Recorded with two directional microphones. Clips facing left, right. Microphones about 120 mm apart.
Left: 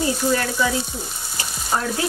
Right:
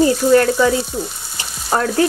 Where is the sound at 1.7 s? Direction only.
60° right (ahead or behind).